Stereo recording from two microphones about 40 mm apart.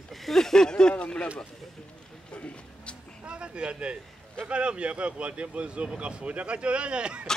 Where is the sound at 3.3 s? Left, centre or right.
Right.